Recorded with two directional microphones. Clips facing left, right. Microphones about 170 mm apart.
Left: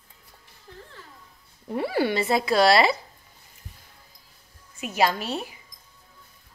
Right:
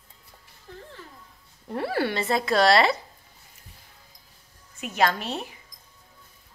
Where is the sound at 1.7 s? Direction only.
5° left (ahead or behind).